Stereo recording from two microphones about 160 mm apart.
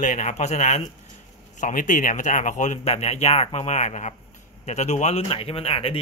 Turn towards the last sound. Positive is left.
turn(degrees=35)  # may be behind; listen again after turning